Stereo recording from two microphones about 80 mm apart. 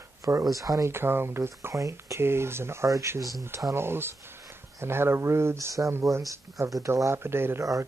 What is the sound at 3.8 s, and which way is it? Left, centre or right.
Speech, right.